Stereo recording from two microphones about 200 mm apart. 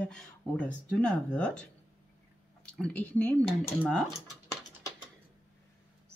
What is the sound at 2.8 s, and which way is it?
Speech, 5° left (ahead or behind).